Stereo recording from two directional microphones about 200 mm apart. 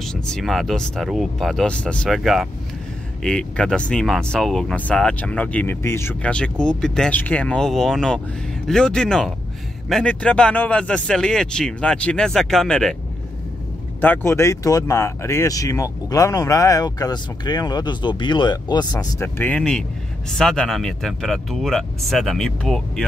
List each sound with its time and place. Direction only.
0.0 s speech: centre (ahead or behind)
14.0 s speech: 10° left (ahead or behind)